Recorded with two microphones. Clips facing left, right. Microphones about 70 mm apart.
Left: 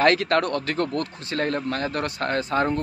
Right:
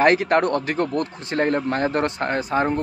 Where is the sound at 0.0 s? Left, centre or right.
Right.